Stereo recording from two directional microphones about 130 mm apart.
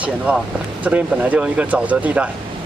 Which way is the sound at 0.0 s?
10° right (ahead or behind).